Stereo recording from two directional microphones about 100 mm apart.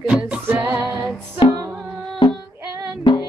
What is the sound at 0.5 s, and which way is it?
Music, 20° right (ahead or behind).